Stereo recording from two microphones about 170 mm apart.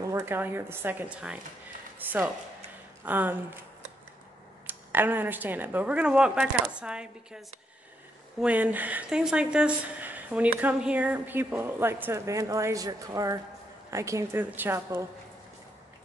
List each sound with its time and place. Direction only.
0.1 s speech: 15° right (ahead or behind)
4.6 s speech: 10° right (ahead or behind)